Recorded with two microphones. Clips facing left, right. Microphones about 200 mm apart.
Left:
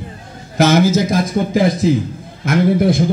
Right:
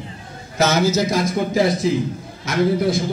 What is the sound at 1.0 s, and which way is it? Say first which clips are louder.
A man's voice: left 3 dB; 50° left (ahead or behind).